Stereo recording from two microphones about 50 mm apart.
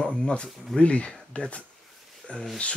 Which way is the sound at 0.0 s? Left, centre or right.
Left.